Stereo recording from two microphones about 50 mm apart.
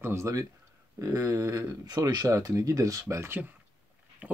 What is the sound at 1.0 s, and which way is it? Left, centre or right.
Speech, right.